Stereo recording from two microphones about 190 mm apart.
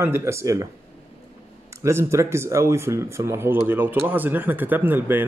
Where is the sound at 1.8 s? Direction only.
15° right (ahead or behind).